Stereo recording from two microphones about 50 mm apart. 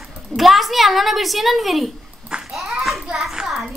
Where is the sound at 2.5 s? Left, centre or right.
Centre.